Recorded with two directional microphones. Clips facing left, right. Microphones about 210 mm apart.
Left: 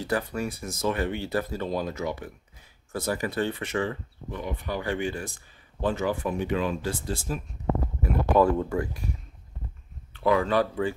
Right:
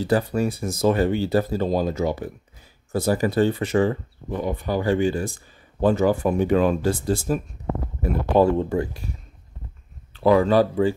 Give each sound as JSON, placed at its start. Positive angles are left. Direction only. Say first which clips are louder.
{"t": 0.0, "sound": "speech", "louder": "right 7 dB", "side_deg": -30}
{"t": 8.0, "sound": "speech", "louder": "right 4 dB", "side_deg": -30}
{"t": 10.1, "sound": "speech", "louder": "right 6 dB", "side_deg": -35}